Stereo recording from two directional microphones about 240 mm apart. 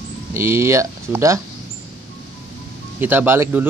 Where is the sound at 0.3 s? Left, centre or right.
Centre.